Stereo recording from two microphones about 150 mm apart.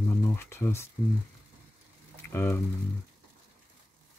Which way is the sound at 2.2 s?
15° left (ahead or behind).